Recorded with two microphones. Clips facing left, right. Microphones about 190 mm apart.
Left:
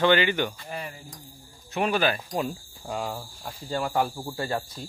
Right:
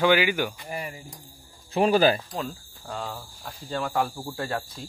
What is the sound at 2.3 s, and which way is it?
Speech, 15° left (ahead or behind).